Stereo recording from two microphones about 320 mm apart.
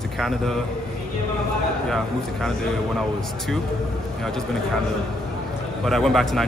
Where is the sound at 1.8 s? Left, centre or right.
Centre.